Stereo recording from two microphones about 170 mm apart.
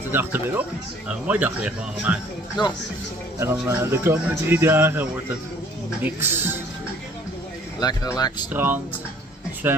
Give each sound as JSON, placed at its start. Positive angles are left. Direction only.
{"t": 0.1, "sound": "speech", "side_deg": -10}
{"t": 2.6, "sound": "speech", "side_deg": 25}
{"t": 3.3, "sound": "speech", "side_deg": -15}
{"t": 6.0, "sound": "speech", "side_deg": -15}
{"t": 8.5, "sound": "speech", "side_deg": -10}